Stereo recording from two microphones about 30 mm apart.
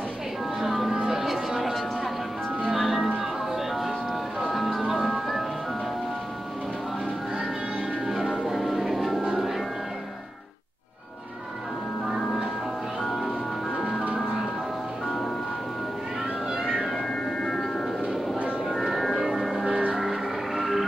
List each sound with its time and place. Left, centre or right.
0.6 s a sound: centre
2.7 s music: centre
4.4 s music: centre
8.1 s music: centre
8.5 s music: centre
17.4 s music: left
19.3 s music: centre